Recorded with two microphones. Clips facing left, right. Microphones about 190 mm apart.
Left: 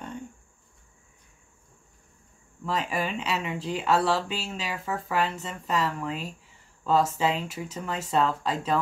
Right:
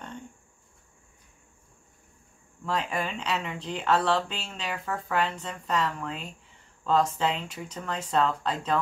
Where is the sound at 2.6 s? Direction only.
5° left (ahead or behind).